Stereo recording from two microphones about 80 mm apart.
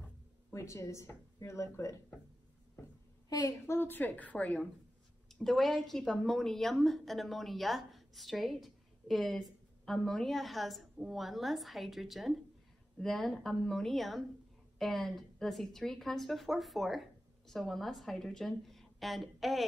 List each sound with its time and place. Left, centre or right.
0.5 s speech: left
3.3 s a woman's voice: left
3.6 s a woman's voice: left
5.3 s a woman's voice: centre